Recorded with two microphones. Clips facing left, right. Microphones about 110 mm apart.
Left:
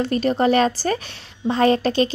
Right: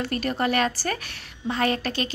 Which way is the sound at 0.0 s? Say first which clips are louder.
Left 7 dB; 25° left (ahead or behind).